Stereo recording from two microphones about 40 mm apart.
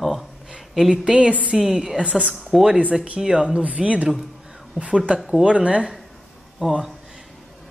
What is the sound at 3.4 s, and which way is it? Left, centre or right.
Speech, right.